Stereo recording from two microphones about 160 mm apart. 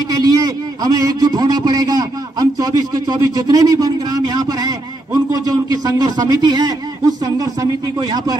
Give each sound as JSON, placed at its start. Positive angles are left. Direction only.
{"t": 0.1, "sound": "a man's voice", "side_deg": -25}